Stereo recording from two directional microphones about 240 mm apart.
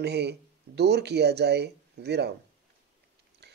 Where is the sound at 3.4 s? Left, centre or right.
Right.